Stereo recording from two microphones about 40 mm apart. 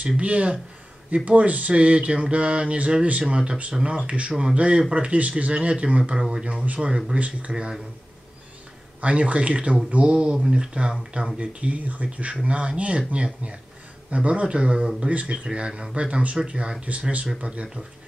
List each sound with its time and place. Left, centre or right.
0.0 s speech: right
9.0 s speech: right
11.3 s speech: right
15.4 s speech: right